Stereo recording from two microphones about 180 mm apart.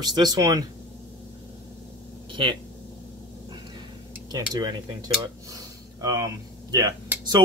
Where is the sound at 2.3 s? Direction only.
25° right (ahead or behind).